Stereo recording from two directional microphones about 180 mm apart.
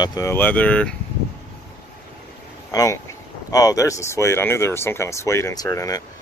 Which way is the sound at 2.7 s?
20° left (ahead or behind).